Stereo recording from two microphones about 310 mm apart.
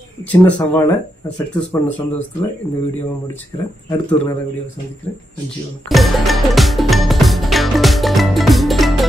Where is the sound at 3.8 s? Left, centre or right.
Centre.